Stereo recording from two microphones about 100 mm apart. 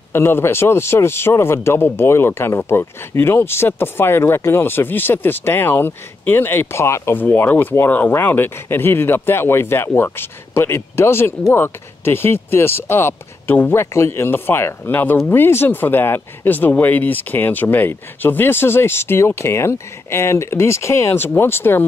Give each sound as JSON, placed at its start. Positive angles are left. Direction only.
{"t": 0.1, "sound": "speech", "side_deg": 25}